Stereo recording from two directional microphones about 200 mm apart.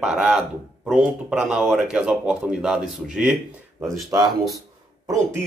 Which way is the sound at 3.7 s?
15° right (ahead or behind).